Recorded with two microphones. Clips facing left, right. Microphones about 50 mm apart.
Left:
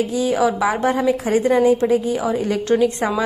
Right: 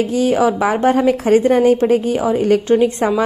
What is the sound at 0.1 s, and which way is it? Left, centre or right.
A woman's voice, right.